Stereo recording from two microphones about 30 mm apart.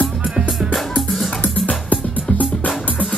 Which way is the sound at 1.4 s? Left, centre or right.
Left.